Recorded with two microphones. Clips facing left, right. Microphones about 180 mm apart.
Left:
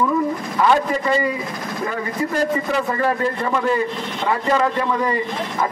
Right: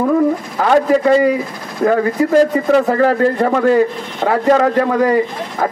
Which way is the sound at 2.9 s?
75° right (ahead or behind).